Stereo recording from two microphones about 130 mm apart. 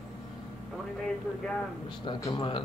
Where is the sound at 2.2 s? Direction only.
40° left (ahead or behind).